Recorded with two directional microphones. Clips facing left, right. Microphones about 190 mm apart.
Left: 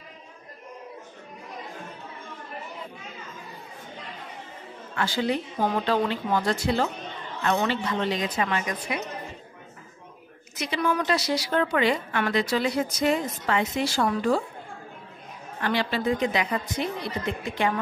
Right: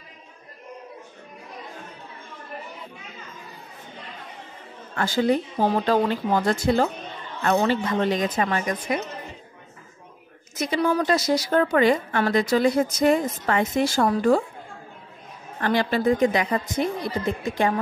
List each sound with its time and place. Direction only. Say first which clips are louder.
4.9 s a woman's voice: right 5 dB; 45° right (ahead or behind)
10.6 s a woman's voice: right 4 dB; 40° right (ahead or behind)
15.6 s a woman's voice: right 4 dB; 45° right (ahead or behind)